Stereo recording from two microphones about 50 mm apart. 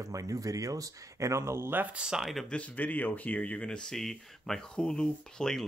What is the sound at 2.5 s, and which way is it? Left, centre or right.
Speech, left.